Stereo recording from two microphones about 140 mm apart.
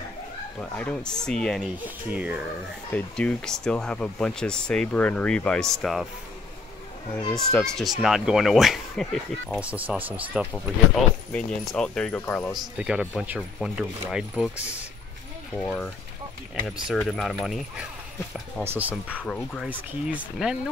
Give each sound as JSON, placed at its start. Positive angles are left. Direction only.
{"t": 0.6, "sound": "speech", "side_deg": 10}
{"t": 2.0, "sound": "speech", "side_deg": -10}
{"t": 2.9, "sound": "speech", "side_deg": 5}
{"t": 7.3, "sound": "speech", "side_deg": 5}
{"t": 9.6, "sound": "speech", "side_deg": -10}
{"t": 11.3, "sound": "speech", "side_deg": 5}
{"t": 12.7, "sound": "speech", "side_deg": -5}
{"t": 15.5, "sound": "speech", "side_deg": 10}
{"t": 16.6, "sound": "speech", "side_deg": 0}
{"t": 18.6, "sound": "speech", "side_deg": -15}
{"t": 19.1, "sound": "speech", "side_deg": 5}
{"t": 19.7, "sound": "speech", "side_deg": -5}